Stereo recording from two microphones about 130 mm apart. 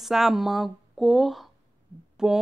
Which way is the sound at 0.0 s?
Centre (ahead or behind).